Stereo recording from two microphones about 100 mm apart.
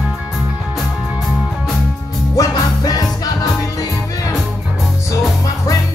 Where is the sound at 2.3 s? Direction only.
40° left (ahead or behind).